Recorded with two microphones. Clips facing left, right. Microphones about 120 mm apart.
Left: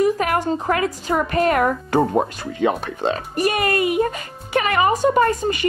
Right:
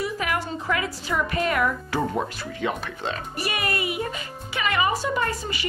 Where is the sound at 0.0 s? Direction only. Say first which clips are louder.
Left 9 dB; 50° left (ahead or behind).